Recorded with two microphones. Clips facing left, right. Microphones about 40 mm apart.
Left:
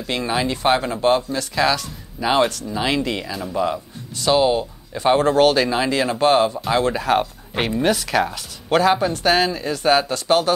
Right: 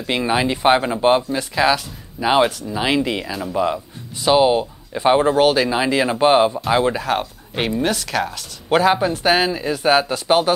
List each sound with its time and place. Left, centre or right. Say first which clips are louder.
0.0 s speech: right 3 dB; centre
6.9 s speech: left 2 dB; centre
8.6 s speech: right 1 dB; centre